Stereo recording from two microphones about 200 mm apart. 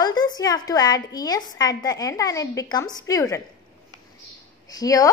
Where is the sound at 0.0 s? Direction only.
20° left (ahead or behind).